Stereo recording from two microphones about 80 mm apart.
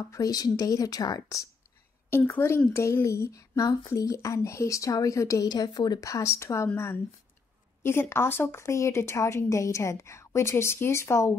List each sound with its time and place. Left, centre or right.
0.1 s speech: left
2.0 s a woman's voice: left
6.0 s speech: left
7.8 s speech: left